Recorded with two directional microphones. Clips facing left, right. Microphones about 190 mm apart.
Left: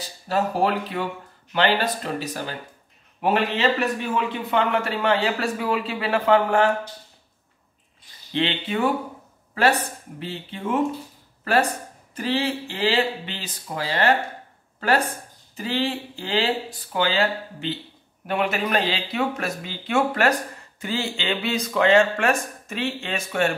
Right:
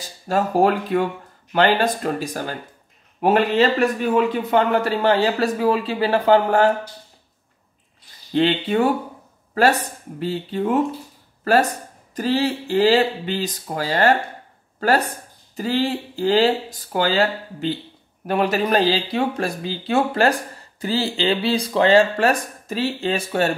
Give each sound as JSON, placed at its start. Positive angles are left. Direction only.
{"t": 0.3, "sound": "a man's voice", "side_deg": -45}
{"t": 8.3, "sound": "a man's voice", "side_deg": -40}
{"t": 10.1, "sound": "a man's voice", "side_deg": -40}
{"t": 12.2, "sound": "a man's voice", "side_deg": -40}
{"t": 15.5, "sound": "a man's voice", "side_deg": -40}